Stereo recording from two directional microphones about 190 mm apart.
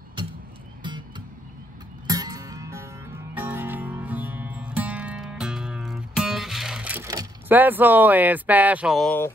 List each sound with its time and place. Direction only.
0.8 s music: 25° right (ahead or behind); by 7.1 s 5° right (ahead or behind)
7.1 s speech: 15° right (ahead or behind)